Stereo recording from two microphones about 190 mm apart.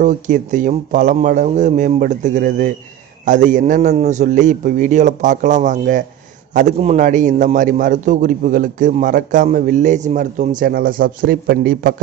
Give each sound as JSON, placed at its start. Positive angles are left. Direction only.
{"t": 0.0, "sound": "a man's voice", "side_deg": -40}